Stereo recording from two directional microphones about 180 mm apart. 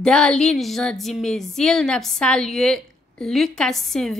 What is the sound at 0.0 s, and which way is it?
Speech, 5° left (ahead or behind).